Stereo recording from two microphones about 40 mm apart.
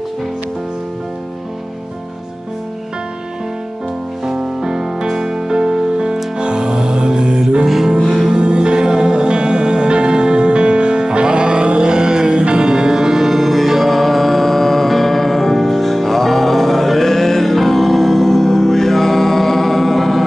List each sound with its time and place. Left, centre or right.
4.3 s music: centre
8.3 s music: right; by 20.2 s centre